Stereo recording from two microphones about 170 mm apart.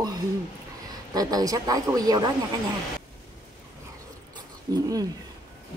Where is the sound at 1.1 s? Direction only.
20° right (ahead or behind).